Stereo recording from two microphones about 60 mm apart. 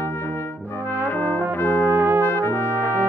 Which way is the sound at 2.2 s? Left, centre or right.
Left.